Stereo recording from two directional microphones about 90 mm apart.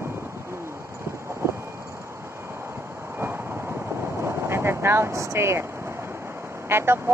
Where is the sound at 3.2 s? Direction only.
25° right (ahead or behind).